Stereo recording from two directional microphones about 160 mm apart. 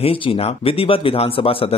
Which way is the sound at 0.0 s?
35° left (ahead or behind).